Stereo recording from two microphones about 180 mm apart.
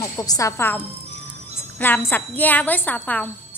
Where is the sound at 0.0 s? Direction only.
20° left (ahead or behind).